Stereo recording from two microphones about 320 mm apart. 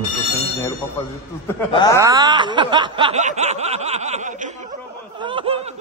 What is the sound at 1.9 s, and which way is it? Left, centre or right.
Snicker, centre.